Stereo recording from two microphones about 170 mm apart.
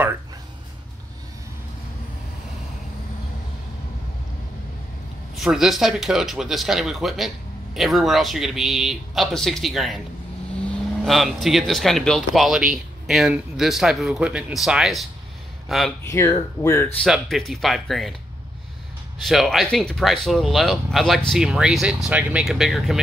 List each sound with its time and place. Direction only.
5.3 s speech: centre (ahead or behind)
11.1 s speech: centre (ahead or behind)
16.0 s speech: 15° left (ahead or behind)
17.0 s speech: centre (ahead or behind)
19.2 s speech: centre (ahead or behind)